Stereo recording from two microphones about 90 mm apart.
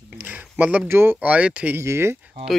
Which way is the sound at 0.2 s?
20° right (ahead or behind).